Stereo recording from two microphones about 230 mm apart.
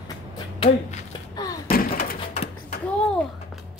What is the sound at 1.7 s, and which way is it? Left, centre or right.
Door, left.